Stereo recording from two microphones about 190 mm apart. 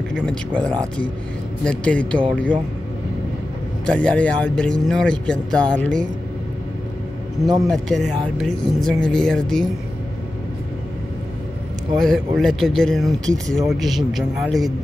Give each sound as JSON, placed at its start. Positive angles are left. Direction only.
{"t": 0.1, "sound": "speech", "side_deg": 5}
{"t": 3.8, "sound": "speech", "side_deg": 5}
{"t": 7.4, "sound": "speech", "side_deg": -20}
{"t": 7.7, "sound": "speech", "side_deg": 0}
{"t": 12.0, "sound": "speech", "side_deg": 0}
{"t": 13.2, "sound": "speech", "side_deg": -20}
{"t": 13.7, "sound": "speech", "side_deg": 0}